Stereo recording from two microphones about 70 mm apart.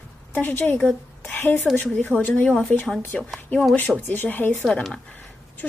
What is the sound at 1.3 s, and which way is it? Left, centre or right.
A woman's voice, left.